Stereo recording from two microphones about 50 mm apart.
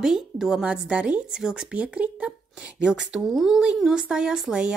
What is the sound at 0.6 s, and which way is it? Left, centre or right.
A woman's voice, right.